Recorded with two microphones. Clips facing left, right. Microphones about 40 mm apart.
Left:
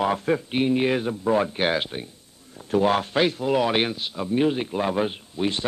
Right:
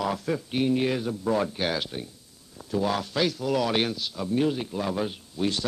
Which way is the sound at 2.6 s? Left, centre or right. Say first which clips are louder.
Left 6 dB; left.